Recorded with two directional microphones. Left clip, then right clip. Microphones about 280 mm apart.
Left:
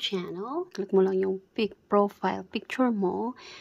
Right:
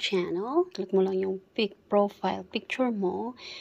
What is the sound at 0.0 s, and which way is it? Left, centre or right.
Speech, centre.